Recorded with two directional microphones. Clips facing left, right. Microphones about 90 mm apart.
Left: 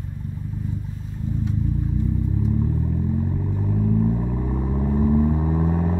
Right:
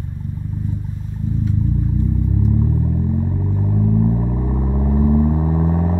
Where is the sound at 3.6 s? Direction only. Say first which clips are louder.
Right 3 dB; 25° right (ahead or behind).